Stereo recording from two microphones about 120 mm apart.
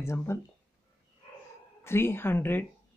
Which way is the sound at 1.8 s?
20° left (ahead or behind).